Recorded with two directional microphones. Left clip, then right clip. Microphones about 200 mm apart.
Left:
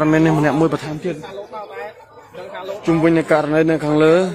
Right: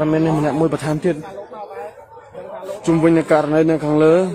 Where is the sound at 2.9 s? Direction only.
10° right (ahead or behind).